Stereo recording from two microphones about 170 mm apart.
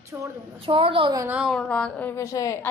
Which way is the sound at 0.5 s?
35° right (ahead or behind).